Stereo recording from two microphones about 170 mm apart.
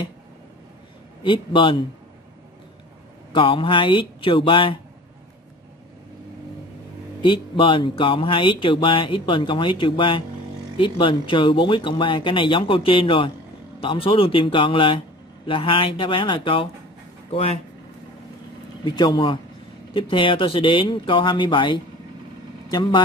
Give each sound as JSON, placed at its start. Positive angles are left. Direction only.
{"t": 1.2, "sound": "speech", "side_deg": 30}
{"t": 3.3, "sound": "speech", "side_deg": 30}
{"t": 7.2, "sound": "speech", "side_deg": 30}
{"t": 18.9, "sound": "speech", "side_deg": 25}